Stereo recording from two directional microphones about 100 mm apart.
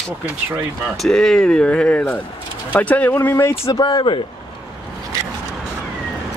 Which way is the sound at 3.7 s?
45° left (ahead or behind).